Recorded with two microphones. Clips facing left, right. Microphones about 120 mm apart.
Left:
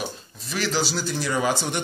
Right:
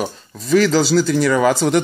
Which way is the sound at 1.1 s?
90° right.